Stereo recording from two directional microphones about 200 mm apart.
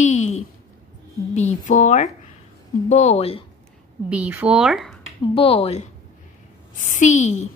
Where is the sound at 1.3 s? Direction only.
35° left (ahead or behind).